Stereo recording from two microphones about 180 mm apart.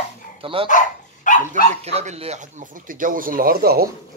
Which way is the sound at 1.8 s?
35° right (ahead or behind).